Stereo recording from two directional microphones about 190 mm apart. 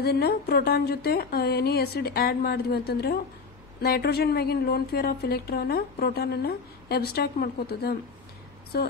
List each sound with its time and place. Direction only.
0.0 s speech: 55° left (ahead or behind)